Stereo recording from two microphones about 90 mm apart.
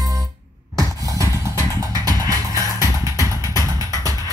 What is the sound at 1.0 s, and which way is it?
Music, 40° right (ahead or behind).